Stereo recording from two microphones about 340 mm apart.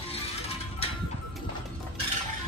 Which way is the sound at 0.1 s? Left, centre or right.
Centre.